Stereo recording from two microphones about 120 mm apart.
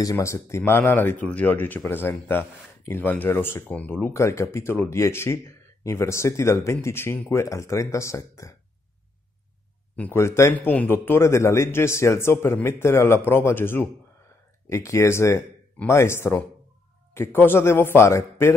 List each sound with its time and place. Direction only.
0.0 s speech: 25° left (ahead or behind)
9.9 s speech: 20° left (ahead or behind)